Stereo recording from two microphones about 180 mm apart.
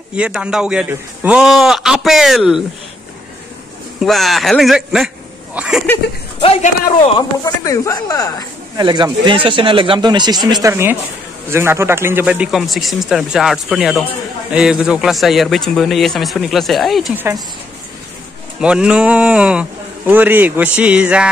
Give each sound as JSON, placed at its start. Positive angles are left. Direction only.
{"t": 0.1, "sound": "a man's voice", "side_deg": -5}
{"t": 4.0, "sound": "a man's voice", "side_deg": 0}
{"t": 6.4, "sound": "a man's voice", "side_deg": 35}
{"t": 7.0, "sound": "speech", "side_deg": 25}
{"t": 8.7, "sound": "a man's voice", "side_deg": -25}
{"t": 17.1, "sound": "a man's voice", "side_deg": -10}
{"t": 18.6, "sound": "a man's voice", "side_deg": -5}